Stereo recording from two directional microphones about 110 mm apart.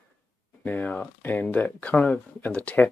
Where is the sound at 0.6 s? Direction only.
15° left (ahead or behind).